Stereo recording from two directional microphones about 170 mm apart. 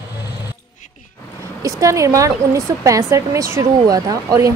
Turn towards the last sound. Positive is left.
turn(degrees=-20)  # may be behind; listen again after turning